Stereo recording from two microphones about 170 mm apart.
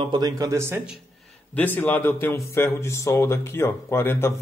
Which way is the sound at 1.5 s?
10° left (ahead or behind).